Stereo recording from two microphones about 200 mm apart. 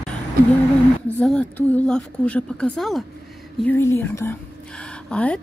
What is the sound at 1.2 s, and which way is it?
A woman's voice, 5° left (ahead or behind).